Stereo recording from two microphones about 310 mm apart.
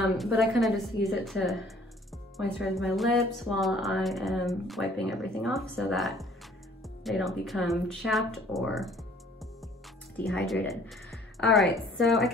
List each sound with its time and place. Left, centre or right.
0.0 s a woman's voice: centre